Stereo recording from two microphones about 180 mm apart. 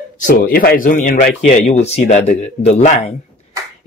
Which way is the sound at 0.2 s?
50° left (ahead or behind).